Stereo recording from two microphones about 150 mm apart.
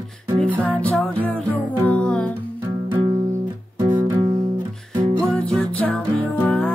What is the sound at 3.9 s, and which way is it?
Music, 30° right (ahead or behind).